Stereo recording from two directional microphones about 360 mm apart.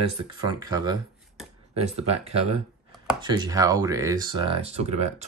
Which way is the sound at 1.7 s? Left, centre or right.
Centre.